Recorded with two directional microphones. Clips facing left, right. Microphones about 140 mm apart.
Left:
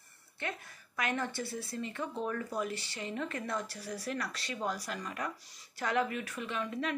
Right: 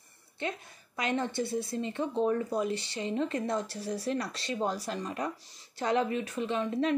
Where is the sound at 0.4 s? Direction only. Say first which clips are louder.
Right 4 dB; 20° right (ahead or behind).